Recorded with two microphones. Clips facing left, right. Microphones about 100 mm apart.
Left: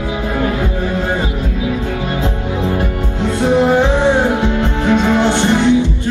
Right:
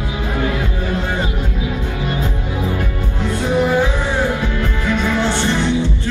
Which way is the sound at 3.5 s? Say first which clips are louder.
Left 4 dB; 25° left (ahead or behind).